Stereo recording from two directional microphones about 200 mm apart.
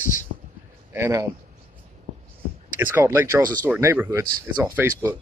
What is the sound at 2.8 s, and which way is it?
Speech, 10° right (ahead or behind).